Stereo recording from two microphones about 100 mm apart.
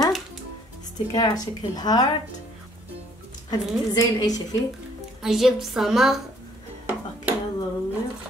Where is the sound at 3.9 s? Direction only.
40° left (ahead or behind).